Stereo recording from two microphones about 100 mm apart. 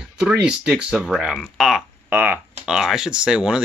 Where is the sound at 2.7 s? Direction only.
5° right (ahead or behind).